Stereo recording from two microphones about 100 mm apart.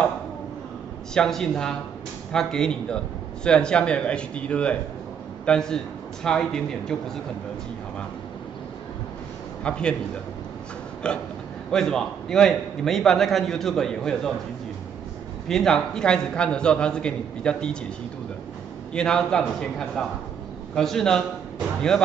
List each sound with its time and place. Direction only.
1.1 s a man's voice: 5° left (ahead or behind)
9.6 s a man's voice: 10° left (ahead or behind)
11.0 s a man's voice: 10° left (ahead or behind)
15.4 s a man's voice: 5° left (ahead or behind)
18.9 s a man's voice: 5° left (ahead or behind)